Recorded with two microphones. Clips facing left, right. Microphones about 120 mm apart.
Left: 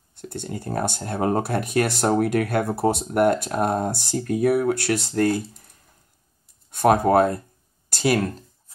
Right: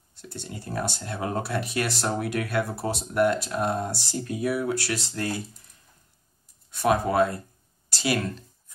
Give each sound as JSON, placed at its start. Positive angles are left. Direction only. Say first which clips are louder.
{"t": 0.1, "sound": "speech", "louder": "left 7 dB", "side_deg": 55}
{"t": 6.7, "sound": "speech", "louder": "left 6 dB", "side_deg": 50}